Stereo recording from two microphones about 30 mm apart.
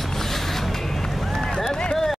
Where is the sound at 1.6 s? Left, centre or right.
Centre.